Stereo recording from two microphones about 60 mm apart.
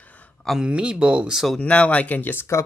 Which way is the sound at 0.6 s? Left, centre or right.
Centre.